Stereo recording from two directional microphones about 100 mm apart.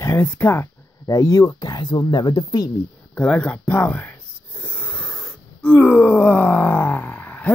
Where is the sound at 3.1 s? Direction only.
15° left (ahead or behind).